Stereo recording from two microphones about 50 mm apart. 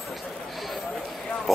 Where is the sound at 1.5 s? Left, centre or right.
Centre.